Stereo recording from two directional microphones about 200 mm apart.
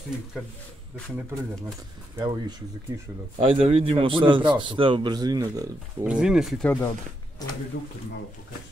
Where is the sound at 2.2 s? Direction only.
25° right (ahead or behind).